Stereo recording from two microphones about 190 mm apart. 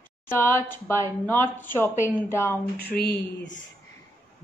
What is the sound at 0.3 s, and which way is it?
A woman's voice, 10° left (ahead or behind).